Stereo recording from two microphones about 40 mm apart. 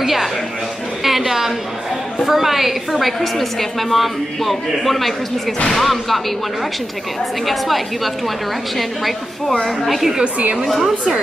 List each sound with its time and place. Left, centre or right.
0.0 s speech: centre
1.0 s a sound: centre
2.2 s a woman's voice: centre
7.4 s a woman's voice: centre
9.7 s a woman's voice: centre
10.2 s a woman's voice: right